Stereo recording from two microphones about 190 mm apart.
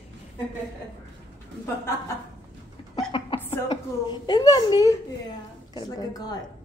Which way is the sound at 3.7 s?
20° left (ahead or behind).